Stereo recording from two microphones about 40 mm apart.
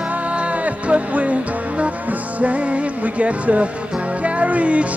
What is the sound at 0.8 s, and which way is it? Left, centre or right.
Music, right.